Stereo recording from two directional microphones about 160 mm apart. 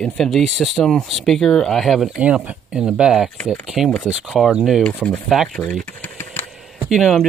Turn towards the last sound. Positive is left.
turn(degrees=0)  # may be behind; listen again after turning